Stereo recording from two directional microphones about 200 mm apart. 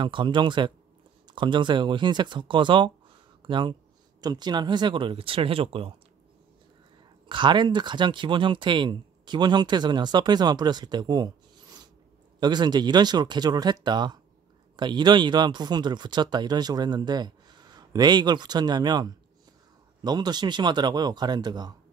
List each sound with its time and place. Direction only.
0.0 s speech: 25° right (ahead or behind)
7.2 s speech: 25° right (ahead or behind)